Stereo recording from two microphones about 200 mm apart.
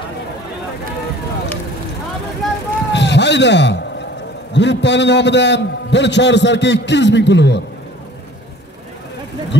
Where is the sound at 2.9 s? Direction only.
60° left (ahead or behind).